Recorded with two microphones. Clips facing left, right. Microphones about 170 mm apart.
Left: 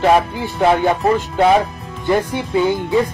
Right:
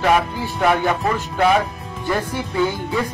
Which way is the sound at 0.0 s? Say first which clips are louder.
Left 4 dB; 30° left (ahead or behind).